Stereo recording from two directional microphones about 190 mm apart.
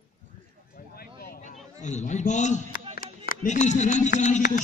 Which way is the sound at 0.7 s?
50° left (ahead or behind).